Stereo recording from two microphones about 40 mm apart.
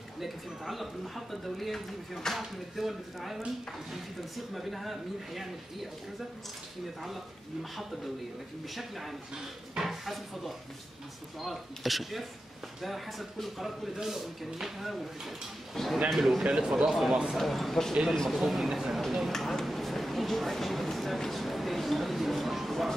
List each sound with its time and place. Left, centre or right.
0.2 s speech: centre
4.6 s speech: centre
8.6 s speech: centre
16.4 s speech: centre
17.1 s speech: centre
17.4 s speech: centre
18.4 s speech: centre
19.6 s a sound: centre